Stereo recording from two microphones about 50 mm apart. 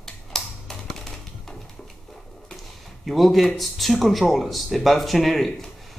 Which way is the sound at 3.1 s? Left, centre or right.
Centre.